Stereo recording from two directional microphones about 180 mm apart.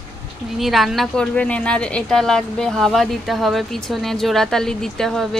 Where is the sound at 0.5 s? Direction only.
Centre (ahead or behind).